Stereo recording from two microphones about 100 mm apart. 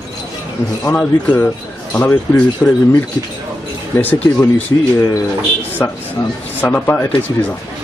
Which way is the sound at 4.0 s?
20° left (ahead or behind).